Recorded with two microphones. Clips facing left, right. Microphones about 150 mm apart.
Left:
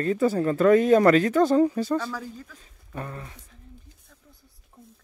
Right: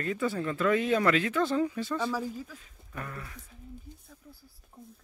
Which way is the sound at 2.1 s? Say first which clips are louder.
Right 3 dB; 10° right (ahead or behind).